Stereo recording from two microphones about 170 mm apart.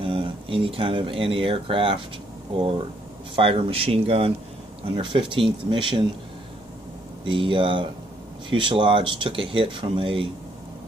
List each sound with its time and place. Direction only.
0.0 s speech: 30° right (ahead or behind)
3.3 s speech: 35° right (ahead or behind)
7.2 s speech: 30° right (ahead or behind)